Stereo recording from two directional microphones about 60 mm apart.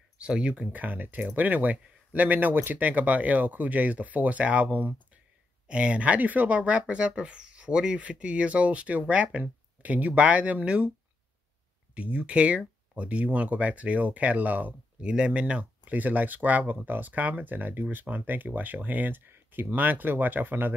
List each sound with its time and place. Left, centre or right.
0.2 s speech: centre
11.9 s speech: right
15.0 s speech: centre; by 20.7 s right